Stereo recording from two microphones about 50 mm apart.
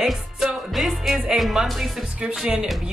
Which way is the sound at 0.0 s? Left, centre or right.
Centre.